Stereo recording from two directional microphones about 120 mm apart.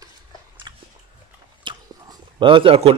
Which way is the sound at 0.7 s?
35° right (ahead or behind).